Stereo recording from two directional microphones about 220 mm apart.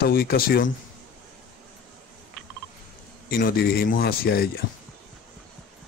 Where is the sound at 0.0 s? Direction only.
45° left (ahead or behind).